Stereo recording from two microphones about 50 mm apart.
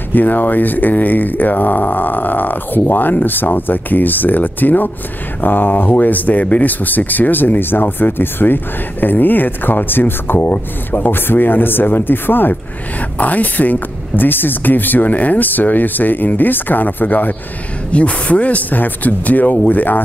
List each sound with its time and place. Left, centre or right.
0.1 s speech: left
17.9 s speech: left